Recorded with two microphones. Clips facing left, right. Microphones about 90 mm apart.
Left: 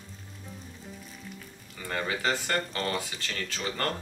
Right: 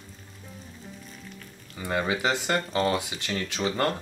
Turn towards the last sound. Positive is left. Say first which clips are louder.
# right 5 dB
turn(degrees=-15)  # may be behind; listen again after turning